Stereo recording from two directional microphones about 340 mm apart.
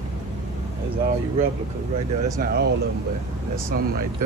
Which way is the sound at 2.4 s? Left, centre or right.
Right.